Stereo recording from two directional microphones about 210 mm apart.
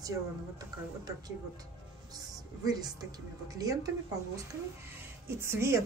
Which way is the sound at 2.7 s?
20° right (ahead or behind).